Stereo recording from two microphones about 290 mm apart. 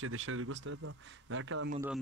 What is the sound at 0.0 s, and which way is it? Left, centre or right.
Speech, right.